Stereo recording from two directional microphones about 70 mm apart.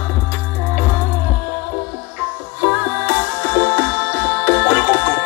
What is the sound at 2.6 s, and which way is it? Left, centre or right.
Music, right.